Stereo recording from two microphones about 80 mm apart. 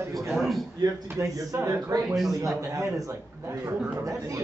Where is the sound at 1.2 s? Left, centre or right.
Right.